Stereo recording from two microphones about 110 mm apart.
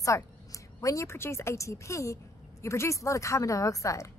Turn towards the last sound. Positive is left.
turn(degrees=30)  # may be behind; listen again after turning